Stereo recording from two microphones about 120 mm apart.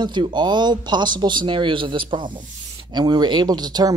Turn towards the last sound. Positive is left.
turn(degrees=-35)  # may be behind; listen again after turning